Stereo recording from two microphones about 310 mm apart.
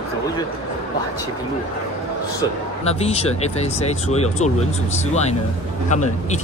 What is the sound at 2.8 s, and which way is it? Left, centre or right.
Speech, centre.